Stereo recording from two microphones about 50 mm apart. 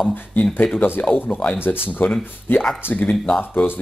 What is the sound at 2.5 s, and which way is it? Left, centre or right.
Speech, left.